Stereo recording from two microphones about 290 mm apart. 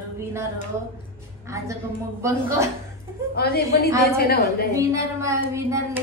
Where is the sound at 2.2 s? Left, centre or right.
Centre.